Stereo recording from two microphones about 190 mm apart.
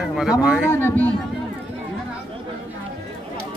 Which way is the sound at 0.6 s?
10° left (ahead or behind).